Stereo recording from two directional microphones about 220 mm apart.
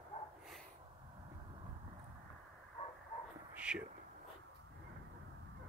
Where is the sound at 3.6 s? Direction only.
5° right (ahead or behind).